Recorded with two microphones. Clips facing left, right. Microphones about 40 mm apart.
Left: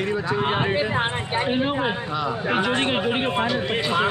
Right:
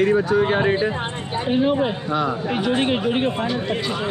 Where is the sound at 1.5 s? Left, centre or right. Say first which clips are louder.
Right 6 dB; centre.